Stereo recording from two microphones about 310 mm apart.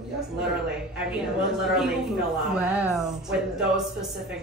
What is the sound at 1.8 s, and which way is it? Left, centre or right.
Speech, centre.